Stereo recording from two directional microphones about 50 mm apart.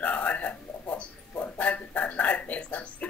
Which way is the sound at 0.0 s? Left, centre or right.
Left.